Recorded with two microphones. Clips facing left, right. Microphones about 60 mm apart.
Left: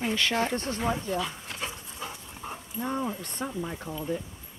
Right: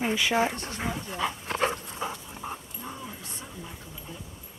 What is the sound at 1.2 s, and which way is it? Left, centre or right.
Speech, right.